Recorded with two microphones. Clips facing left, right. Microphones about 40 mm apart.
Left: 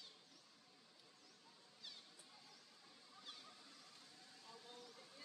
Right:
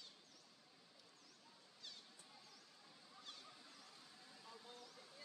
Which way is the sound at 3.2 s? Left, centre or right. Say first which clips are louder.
Even; centre.